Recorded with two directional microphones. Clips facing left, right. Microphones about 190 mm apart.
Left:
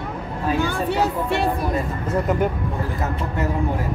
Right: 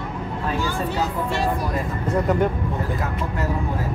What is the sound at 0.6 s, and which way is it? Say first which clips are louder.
Speech: left 3 dB; 60° left (ahead or behind).